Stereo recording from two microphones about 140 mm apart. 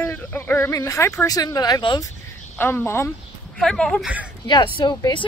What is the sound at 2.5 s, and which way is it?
Speech, 15° left (ahead or behind).